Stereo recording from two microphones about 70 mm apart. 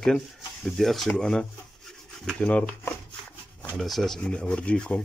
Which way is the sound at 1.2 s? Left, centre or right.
Centre.